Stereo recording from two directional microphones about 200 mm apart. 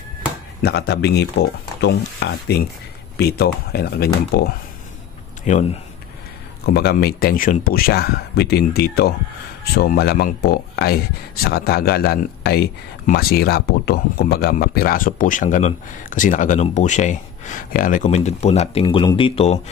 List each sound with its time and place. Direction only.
0.6 s speech: 55° left (ahead or behind)
5.4 s speech: 35° left (ahead or behind)
6.6 s speech: 50° left (ahead or behind); by 19.6 s 30° left (ahead or behind)